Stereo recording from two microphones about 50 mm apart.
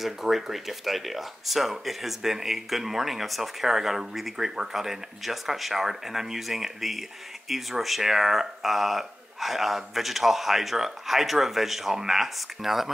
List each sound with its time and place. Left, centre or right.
0.0 s speech: centre